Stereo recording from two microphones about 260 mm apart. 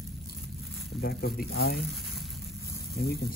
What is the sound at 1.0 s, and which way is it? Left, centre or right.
Speech, left.